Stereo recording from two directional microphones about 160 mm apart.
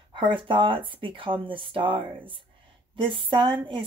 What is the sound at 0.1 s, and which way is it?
Speech, 30° right (ahead or behind).